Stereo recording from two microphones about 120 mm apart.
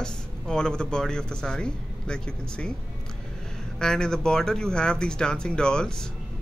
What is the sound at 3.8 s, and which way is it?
Speech, 5° left (ahead or behind).